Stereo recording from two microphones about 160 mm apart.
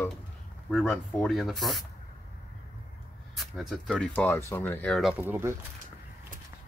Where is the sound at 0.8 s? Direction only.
5° left (ahead or behind).